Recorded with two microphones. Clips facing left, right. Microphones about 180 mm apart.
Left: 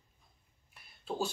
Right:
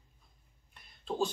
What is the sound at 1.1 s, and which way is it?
Speech, 5° left (ahead or behind).